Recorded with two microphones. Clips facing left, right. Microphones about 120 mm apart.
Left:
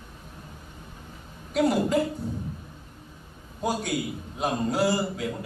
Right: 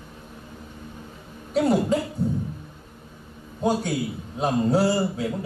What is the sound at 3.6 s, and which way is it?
A man's voice, 30° right (ahead or behind).